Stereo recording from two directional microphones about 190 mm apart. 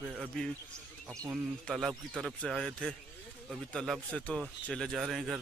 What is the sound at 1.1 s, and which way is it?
Speech, 15° right (ahead or behind).